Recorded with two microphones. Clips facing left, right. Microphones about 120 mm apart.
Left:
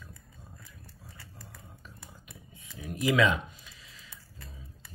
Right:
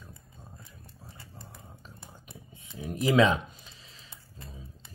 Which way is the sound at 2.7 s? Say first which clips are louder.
Right 3 dB; 25° right (ahead or behind).